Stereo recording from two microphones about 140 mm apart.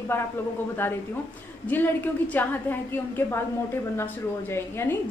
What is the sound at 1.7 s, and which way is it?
A woman's voice, 15° left (ahead or behind).